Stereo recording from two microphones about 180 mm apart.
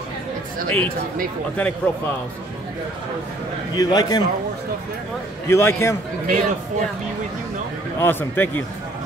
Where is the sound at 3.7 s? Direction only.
20° left (ahead or behind).